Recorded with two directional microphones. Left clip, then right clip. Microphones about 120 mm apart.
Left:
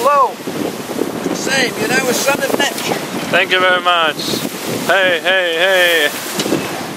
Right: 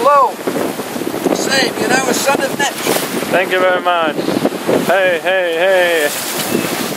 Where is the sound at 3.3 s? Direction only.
40° left (ahead or behind).